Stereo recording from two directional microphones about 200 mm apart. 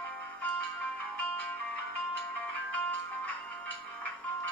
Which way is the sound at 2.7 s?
10° left (ahead or behind).